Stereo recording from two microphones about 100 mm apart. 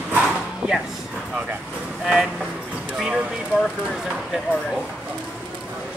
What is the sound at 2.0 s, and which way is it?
Speech, 5° right (ahead or behind).